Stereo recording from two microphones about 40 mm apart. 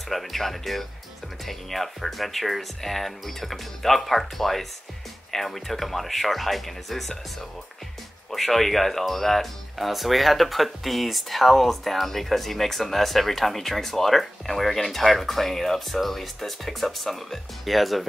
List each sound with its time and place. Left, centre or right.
0.1 s speech: centre
8.3 s speech: centre